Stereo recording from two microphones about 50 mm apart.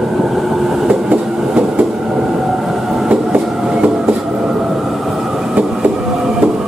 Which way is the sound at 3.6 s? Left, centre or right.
Centre.